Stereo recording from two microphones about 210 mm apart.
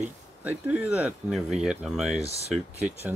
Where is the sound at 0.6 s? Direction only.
5° right (ahead or behind).